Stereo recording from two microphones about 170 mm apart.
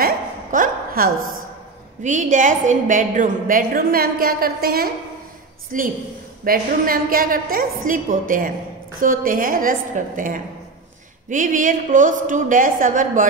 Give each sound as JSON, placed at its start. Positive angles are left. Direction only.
{"t": 0.0, "sound": "a sound", "side_deg": -55}
{"t": 2.0, "sound": "a woman's voice", "side_deg": -50}
{"t": 5.7, "sound": "a woman's voice", "side_deg": -50}